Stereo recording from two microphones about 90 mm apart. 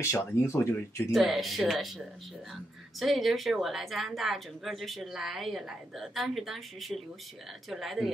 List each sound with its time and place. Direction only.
0.0 s speech: 30° left (ahead or behind)
1.1 s speech: centre (ahead or behind)